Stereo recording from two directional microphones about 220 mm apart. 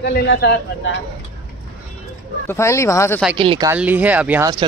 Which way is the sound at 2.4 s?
10° left (ahead or behind).